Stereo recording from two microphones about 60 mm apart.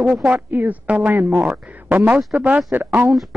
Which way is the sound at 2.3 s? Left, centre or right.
Right.